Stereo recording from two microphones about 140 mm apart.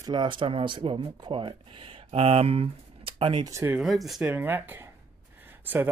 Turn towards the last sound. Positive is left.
turn(degrees=-15)  # may be behind; listen again after turning